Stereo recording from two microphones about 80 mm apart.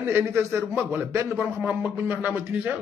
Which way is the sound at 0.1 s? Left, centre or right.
Right.